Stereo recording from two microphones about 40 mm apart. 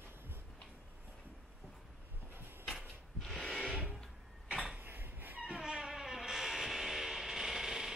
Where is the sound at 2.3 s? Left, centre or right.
Right.